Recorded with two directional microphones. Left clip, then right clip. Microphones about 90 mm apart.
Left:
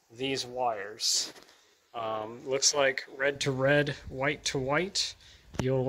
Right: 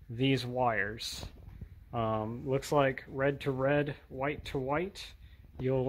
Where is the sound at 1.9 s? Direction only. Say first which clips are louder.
Right 1 dB; 5° right (ahead or behind).